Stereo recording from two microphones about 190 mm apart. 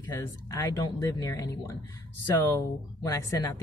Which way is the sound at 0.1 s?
20° left (ahead or behind).